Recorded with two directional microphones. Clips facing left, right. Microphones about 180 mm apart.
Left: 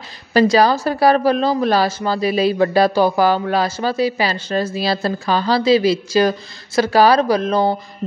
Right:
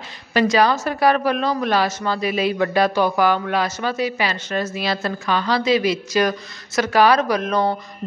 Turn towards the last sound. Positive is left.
turn(degrees=30)  # may be behind; listen again after turning